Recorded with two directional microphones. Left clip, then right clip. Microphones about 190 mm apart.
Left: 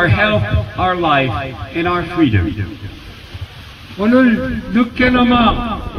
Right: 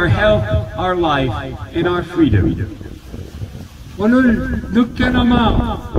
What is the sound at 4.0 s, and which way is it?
Speech, 35° left (ahead or behind).